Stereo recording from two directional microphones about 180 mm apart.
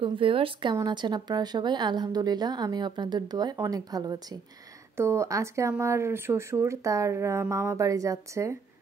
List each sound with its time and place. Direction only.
0.0 s a woman's voice: 30° right (ahead or behind)